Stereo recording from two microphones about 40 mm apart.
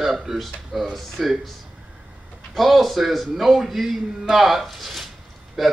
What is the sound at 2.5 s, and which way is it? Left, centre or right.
Speech, centre.